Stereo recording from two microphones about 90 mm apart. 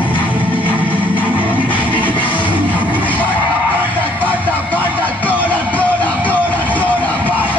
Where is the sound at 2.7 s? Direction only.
20° right (ahead or behind).